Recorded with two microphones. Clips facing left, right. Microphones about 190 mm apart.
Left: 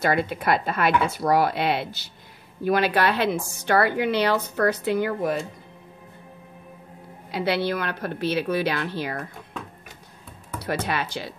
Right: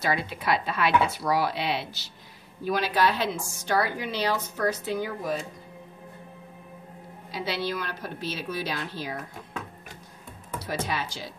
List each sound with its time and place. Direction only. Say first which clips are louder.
0.0 s a woman's voice: left 5 dB; 55° left (ahead or behind)
7.2 s a woman's voice: left 6 dB; 60° left (ahead or behind)
10.6 s a woman's voice: left 4 dB; 60° left (ahead or behind)